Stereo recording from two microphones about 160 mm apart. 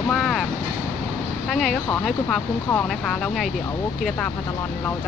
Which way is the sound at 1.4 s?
Centre (ahead or behind).